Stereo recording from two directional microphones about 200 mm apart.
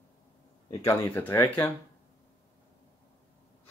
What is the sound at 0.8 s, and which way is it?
Speech, 15° left (ahead or behind).